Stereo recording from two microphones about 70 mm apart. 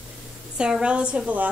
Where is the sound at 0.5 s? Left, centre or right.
Centre.